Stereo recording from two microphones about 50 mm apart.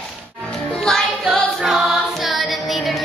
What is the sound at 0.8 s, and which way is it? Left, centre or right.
Music, centre.